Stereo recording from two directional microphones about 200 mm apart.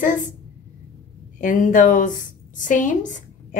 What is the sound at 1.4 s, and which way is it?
A woman's voice, 40° left (ahead or behind).